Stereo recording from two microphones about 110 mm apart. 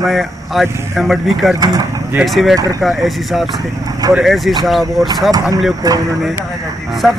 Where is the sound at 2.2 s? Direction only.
Centre (ahead or behind).